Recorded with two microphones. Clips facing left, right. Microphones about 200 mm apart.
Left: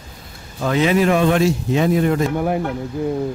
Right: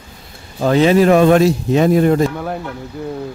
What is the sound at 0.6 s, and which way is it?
A man's voice, 35° right (ahead or behind).